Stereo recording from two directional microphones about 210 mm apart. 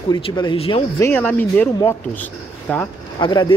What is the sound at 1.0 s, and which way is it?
Speech, 10° left (ahead or behind).